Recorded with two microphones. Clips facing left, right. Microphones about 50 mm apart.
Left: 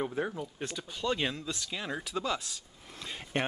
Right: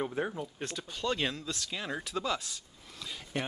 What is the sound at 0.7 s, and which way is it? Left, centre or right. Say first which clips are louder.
Speech: left 1 dB; centre.